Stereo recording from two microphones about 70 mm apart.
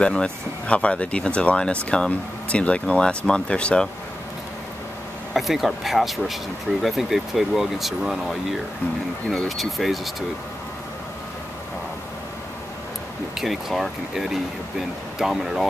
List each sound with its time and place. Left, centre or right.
0.0 s speech: centre
5.3 s speech: centre
13.4 s speech: centre